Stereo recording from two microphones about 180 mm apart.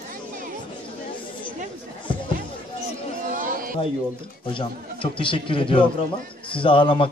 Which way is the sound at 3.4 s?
50° right (ahead or behind).